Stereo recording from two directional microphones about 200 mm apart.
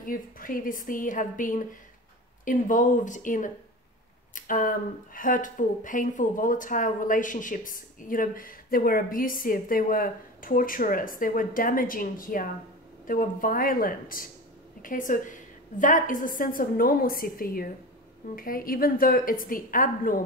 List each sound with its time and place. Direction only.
0.0 s speech: 45° left (ahead or behind)